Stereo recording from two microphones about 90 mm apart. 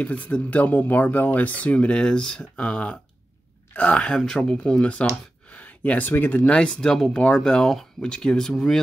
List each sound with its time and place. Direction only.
0.0 s speech: 15° left (ahead or behind)